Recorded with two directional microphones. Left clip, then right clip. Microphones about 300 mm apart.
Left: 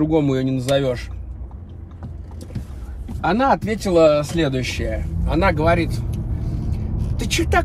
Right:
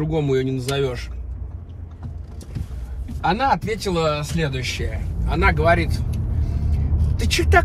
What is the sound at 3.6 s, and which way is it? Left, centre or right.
Speech, centre.